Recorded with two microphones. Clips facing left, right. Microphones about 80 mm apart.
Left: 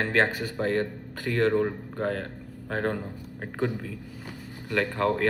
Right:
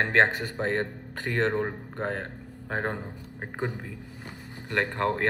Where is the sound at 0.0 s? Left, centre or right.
Right.